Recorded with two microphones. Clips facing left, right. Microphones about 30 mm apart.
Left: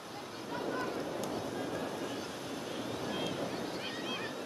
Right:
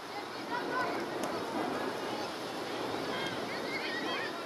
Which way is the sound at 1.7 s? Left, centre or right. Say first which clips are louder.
Right 2 dB; right.